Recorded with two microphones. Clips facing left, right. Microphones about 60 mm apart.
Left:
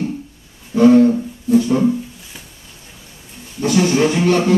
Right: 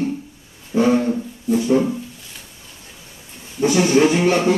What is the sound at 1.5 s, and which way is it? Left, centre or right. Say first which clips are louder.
Music: left 3 dB; centre.